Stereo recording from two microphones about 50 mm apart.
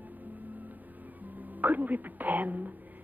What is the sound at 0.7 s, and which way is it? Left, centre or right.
Music, right.